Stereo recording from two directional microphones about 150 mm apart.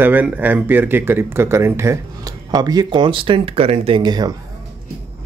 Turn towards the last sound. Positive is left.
turn(degrees=-30)  # may be behind; listen again after turning